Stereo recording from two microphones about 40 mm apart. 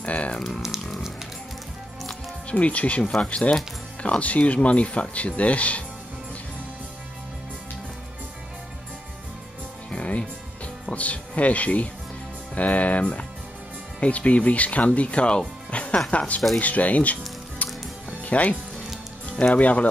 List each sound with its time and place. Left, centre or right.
0.0 s a sound: left
0.7 s speech: centre
2.5 s speech: left
9.8 s music: left
10.9 s speech: left
17.6 s music: left
19.4 s speech: left